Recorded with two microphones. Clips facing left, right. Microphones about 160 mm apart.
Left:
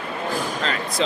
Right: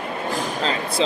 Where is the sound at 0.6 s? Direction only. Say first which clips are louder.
Right 4 dB; 30° right (ahead or behind).